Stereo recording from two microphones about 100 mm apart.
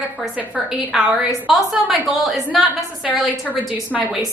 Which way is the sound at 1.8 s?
5° right (ahead or behind).